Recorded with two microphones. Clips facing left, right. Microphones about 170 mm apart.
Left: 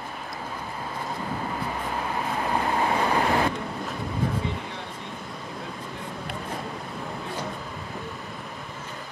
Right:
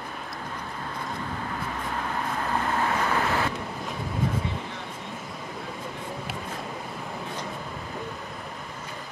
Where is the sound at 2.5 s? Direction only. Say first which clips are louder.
Left 2 dB; 15° left (ahead or behind).